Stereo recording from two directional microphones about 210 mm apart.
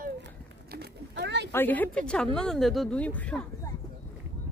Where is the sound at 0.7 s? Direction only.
50° right (ahead or behind).